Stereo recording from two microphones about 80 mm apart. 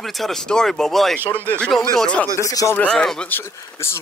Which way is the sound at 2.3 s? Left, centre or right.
Left.